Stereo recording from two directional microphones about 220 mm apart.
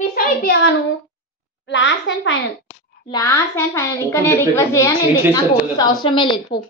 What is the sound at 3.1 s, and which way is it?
A child's voice, 15° left (ahead or behind).